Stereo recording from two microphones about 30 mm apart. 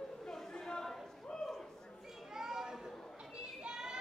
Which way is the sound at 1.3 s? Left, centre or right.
Centre.